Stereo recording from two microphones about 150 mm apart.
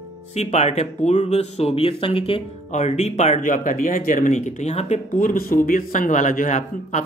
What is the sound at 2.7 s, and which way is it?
Speech, 50° left (ahead or behind).